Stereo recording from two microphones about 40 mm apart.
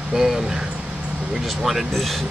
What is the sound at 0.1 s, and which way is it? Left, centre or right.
Speech, centre.